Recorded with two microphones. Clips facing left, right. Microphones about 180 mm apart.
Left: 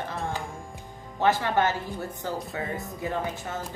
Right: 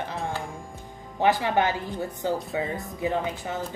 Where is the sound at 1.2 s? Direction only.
15° right (ahead or behind).